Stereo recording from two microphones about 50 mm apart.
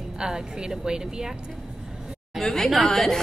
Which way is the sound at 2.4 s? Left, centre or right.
Centre.